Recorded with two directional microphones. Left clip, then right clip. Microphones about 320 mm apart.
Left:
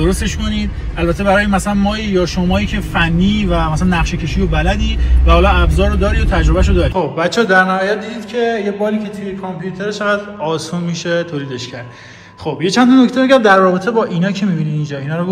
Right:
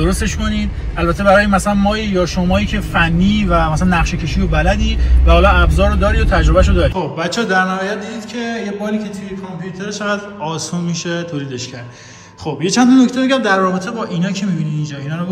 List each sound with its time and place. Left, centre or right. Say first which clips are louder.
0.0 s a man's voice: left 1 dB; centre
12.4 s speech: left 1 dB; centre